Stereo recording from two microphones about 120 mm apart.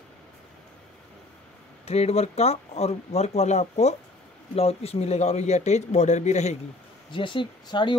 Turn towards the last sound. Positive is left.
turn(degrees=40)  # may be behind; listen again after turning